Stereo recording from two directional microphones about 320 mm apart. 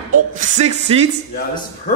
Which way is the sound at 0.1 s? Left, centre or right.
Right.